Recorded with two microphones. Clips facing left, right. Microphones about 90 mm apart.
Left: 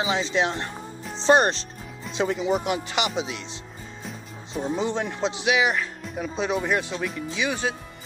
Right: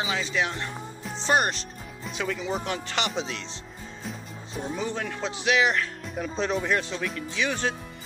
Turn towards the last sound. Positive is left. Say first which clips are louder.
# left 1 dB
turn(degrees=10)  # may be behind; listen again after turning